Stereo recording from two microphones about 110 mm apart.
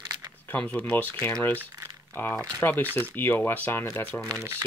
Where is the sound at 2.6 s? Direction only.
20° left (ahead or behind).